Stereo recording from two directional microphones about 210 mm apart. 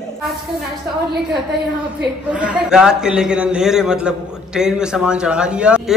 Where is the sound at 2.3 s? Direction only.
5° right (ahead or behind).